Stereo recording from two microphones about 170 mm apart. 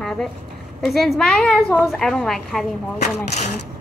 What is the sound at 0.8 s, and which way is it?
A child's voice, centre (ahead or behind).